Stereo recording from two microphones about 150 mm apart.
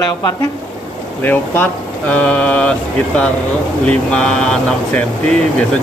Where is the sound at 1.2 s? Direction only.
15° left (ahead or behind).